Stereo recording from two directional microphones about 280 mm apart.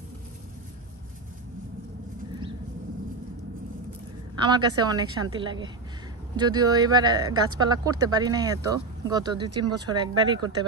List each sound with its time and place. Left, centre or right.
4.4 s speech: centre